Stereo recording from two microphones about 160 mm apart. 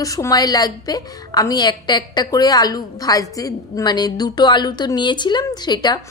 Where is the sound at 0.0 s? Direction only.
20° left (ahead or behind).